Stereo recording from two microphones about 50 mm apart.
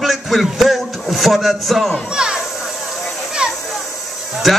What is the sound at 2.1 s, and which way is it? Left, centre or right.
Speech, centre.